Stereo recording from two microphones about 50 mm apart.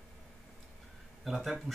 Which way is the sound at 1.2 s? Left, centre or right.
Centre.